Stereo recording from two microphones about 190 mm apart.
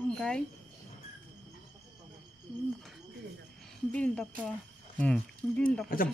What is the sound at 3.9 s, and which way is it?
Speech, 5° left (ahead or behind).